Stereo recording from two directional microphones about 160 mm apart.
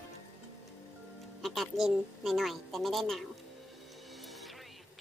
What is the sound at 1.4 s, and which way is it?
A woman's voice, centre (ahead or behind).